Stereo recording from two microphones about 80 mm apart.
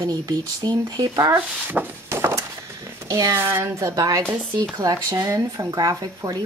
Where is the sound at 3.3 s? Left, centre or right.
Right.